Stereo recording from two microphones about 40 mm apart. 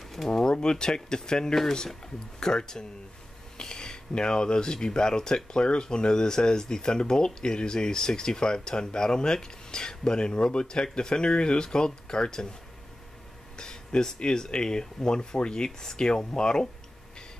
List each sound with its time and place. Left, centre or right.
0.3 s speech: centre
13.6 s speech: centre